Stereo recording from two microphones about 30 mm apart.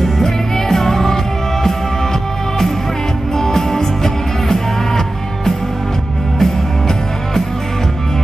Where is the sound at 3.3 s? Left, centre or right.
Centre.